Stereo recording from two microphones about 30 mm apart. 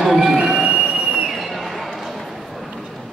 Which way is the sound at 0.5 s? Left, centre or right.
Right.